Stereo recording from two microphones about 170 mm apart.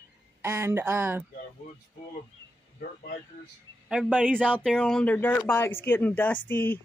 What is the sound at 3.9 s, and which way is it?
Speech, 5° right (ahead or behind).